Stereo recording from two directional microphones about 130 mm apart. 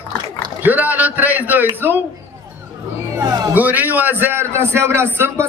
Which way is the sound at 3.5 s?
15° right (ahead or behind).